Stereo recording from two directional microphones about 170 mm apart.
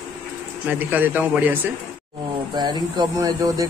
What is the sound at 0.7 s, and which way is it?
Speech, 10° right (ahead or behind).